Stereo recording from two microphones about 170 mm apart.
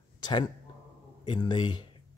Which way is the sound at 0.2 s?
25° left (ahead or behind).